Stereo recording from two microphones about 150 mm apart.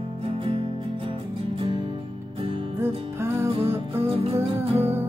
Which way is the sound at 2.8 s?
15° right (ahead or behind).